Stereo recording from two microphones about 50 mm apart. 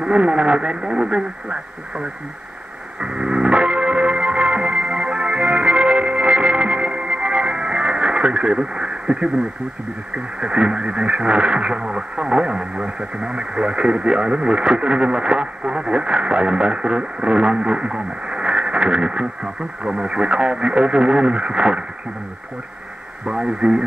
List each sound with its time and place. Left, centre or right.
0.0 s speech: centre
3.0 s music: centre
10.1 s speech: centre
23.2 s speech: centre